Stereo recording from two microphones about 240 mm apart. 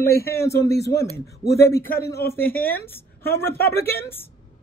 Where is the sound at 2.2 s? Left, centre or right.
Centre.